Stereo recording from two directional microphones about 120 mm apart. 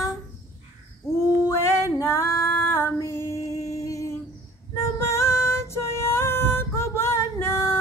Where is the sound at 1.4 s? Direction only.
25° left (ahead or behind).